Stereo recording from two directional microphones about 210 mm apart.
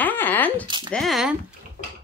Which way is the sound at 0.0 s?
10° left (ahead or behind).